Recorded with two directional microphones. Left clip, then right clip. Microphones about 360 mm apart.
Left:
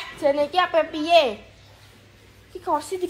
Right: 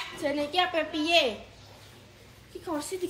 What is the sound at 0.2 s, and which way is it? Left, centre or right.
A child's voice, centre.